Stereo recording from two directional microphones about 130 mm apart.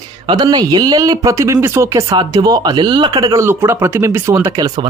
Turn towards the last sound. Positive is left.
turn(degrees=-30)  # may be behind; listen again after turning